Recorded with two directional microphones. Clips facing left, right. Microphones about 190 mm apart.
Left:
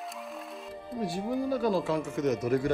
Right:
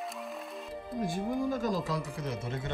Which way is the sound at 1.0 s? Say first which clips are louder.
Left 1 dB; 45° right (ahead or behind).